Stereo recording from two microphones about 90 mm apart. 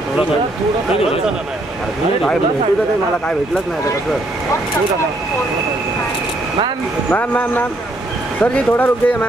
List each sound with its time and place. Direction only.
7.1 s speech: 20° left (ahead or behind)